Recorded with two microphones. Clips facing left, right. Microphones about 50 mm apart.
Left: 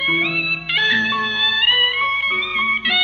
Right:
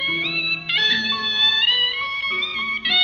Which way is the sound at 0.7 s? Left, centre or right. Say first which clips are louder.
Left 5 dB; left.